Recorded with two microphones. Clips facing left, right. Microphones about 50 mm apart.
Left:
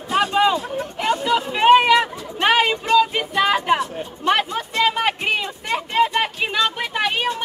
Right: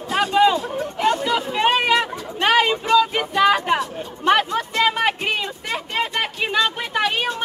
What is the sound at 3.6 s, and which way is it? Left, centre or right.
Speech, centre.